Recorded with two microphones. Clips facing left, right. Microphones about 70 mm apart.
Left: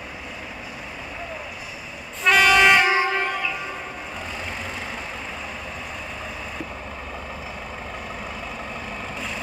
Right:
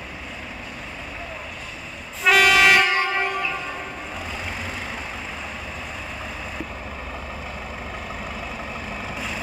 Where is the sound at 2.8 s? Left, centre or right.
Centre.